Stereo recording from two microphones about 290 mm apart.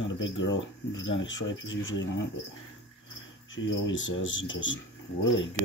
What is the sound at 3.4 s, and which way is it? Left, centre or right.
Speech, left.